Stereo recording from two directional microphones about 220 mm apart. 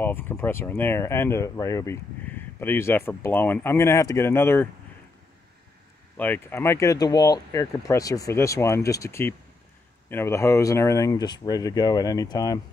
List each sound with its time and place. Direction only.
0.0 s speech: 10° left (ahead or behind)
6.1 s speech: 10° left (ahead or behind)